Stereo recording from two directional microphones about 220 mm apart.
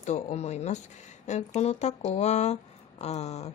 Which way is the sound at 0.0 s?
30° left (ahead or behind).